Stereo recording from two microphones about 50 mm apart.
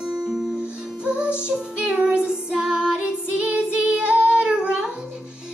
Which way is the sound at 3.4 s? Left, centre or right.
Right.